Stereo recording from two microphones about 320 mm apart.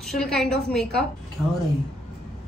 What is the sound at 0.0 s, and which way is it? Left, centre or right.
A woman's voice, centre.